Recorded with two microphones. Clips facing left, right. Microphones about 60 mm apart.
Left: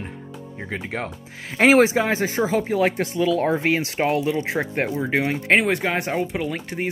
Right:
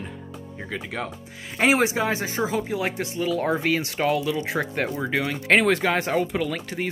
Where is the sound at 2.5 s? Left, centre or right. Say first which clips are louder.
Left 5 dB; left.